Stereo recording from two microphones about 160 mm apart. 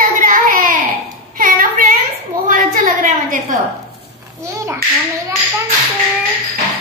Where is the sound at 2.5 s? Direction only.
55° right (ahead or behind).